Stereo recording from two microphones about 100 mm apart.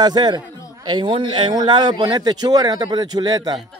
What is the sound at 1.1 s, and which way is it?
Speech, 55° right (ahead or behind).